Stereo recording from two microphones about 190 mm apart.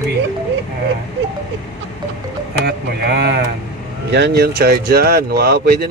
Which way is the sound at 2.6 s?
60° right (ahead or behind).